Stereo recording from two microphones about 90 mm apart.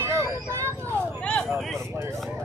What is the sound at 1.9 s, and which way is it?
Speech, 30° right (ahead or behind).